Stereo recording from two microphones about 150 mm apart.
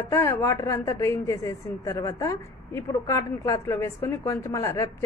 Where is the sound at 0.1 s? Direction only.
15° left (ahead or behind).